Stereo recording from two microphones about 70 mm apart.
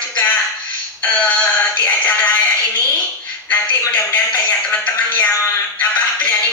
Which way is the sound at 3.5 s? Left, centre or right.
Left.